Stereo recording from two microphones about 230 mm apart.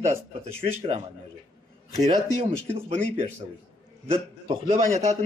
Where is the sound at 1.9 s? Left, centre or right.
Right.